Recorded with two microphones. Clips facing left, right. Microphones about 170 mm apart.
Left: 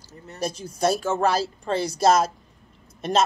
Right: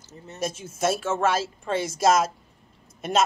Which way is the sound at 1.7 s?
30° left (ahead or behind).